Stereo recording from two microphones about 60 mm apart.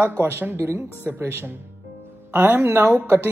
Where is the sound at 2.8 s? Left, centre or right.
Right.